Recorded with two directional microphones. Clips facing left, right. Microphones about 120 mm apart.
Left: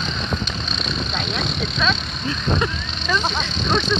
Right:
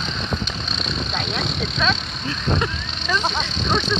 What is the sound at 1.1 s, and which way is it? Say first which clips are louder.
Vehicle: right 1 dB; 45° right (ahead or behind).